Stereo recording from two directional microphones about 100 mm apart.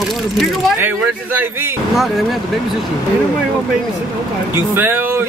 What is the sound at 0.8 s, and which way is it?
Speech, 20° right (ahead or behind).